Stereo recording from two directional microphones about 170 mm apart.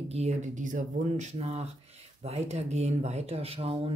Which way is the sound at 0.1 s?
40° right (ahead or behind).